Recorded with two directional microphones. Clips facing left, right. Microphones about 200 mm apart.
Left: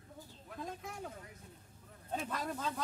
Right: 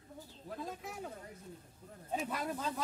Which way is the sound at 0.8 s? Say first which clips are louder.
Right 1 dB; 5° right (ahead or behind).